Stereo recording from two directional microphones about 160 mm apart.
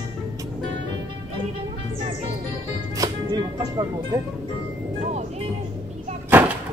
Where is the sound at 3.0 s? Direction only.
25° right (ahead or behind).